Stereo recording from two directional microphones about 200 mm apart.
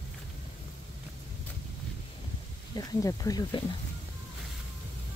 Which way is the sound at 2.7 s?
15° left (ahead or behind).